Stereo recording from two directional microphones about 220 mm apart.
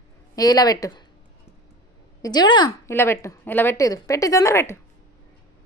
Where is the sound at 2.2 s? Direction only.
20° left (ahead or behind).